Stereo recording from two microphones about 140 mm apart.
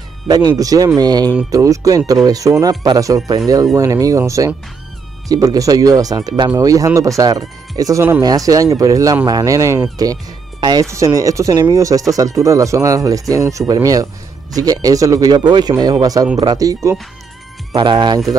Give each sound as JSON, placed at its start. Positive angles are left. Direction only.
{"t": 0.3, "sound": "speech", "side_deg": -25}